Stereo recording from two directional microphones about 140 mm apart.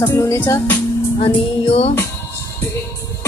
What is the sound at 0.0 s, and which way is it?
Music, 20° left (ahead or behind).